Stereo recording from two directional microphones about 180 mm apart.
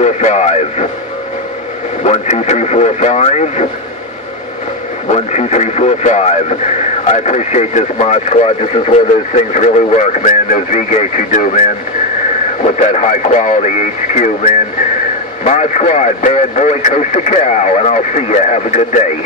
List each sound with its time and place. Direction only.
0.0 s radio: 40° left (ahead or behind)
2.0 s speech: 40° left (ahead or behind)
5.0 s speech: 40° left (ahead or behind)
12.6 s speech: 35° left (ahead or behind)